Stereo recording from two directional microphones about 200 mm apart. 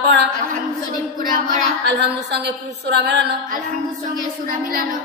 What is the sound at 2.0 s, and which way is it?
A woman's voice, 55° right (ahead or behind).